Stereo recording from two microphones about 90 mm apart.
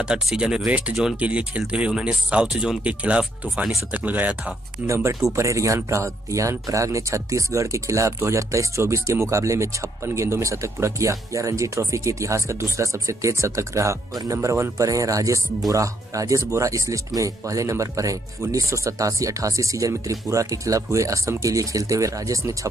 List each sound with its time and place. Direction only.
0.0 s speech: 10° right (ahead or behind)
4.8 s speech: 30° right (ahead or behind)